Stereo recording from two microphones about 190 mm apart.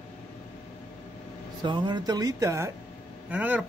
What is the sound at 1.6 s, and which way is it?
A man's voice, 25° right (ahead or behind).